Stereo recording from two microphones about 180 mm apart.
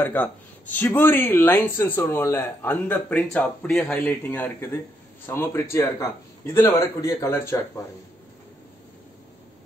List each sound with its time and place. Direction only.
0.0 s speech: 10° left (ahead or behind)